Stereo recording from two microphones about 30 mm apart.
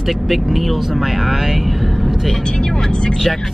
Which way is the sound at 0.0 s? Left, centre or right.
Centre.